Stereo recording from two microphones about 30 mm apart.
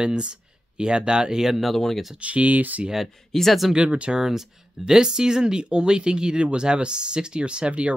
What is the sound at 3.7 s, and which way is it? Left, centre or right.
Speech, right.